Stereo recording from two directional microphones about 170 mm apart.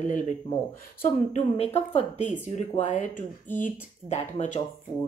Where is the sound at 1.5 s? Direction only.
40° left (ahead or behind).